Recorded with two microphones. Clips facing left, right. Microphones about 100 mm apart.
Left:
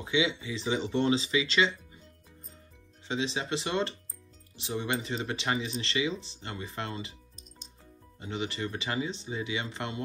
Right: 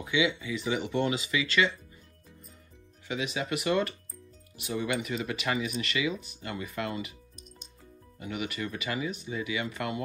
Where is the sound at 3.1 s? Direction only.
30° left (ahead or behind).